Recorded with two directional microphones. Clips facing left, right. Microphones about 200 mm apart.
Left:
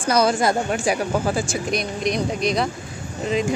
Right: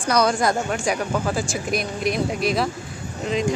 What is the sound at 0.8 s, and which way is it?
A woman's voice, centre (ahead or behind).